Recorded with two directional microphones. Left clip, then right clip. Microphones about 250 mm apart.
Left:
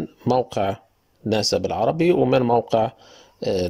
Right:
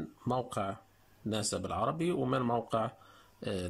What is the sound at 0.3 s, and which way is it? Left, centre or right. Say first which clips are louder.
Speech: left 14 dB; left.